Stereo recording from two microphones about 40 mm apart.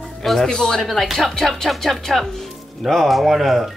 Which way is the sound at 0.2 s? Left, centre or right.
Centre.